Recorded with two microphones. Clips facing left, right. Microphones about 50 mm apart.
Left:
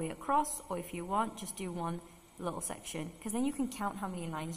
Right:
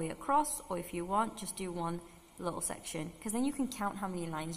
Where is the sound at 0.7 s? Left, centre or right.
Right.